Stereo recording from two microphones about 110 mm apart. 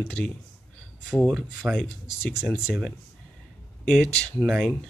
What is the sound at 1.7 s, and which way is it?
Speech, 10° left (ahead or behind).